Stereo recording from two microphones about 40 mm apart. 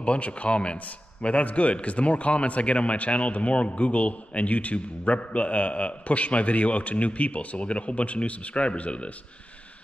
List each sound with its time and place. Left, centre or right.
0.0 s a man's voice: left